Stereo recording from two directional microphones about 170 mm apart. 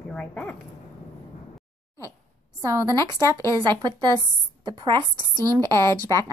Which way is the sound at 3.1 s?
20° right (ahead or behind).